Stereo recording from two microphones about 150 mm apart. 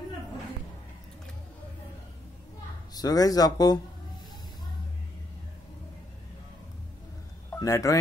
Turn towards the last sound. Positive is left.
turn(degrees=20)  # may be behind; listen again after turning